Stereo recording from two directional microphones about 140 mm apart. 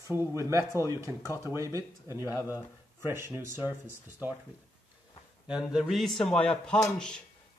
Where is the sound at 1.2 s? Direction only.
20° left (ahead or behind).